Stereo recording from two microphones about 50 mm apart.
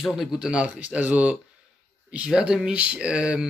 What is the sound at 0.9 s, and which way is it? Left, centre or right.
Speech, right.